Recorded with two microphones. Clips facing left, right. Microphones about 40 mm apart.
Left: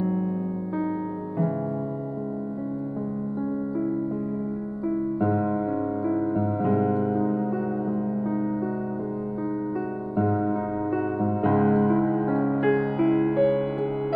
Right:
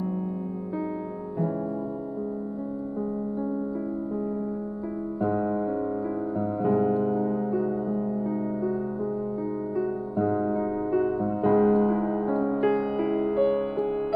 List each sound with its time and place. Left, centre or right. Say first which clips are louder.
5.2 s music: even; left
6.6 s music: right 2 dB; left
10.1 s music: left 2 dB; left
11.4 s music: right 1 dB; left